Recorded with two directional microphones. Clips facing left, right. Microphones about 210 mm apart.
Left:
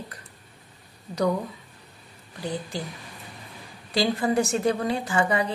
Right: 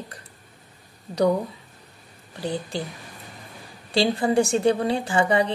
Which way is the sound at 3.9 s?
30° right (ahead or behind).